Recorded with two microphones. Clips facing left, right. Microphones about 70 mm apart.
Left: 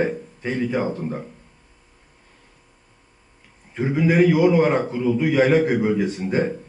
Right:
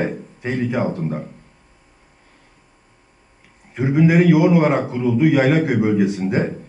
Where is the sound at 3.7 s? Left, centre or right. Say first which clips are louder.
Right 4 dB; centre.